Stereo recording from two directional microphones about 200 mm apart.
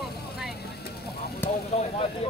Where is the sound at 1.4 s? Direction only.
10° left (ahead or behind).